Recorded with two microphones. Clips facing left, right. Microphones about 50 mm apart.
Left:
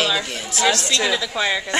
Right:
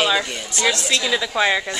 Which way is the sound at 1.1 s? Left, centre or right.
Centre.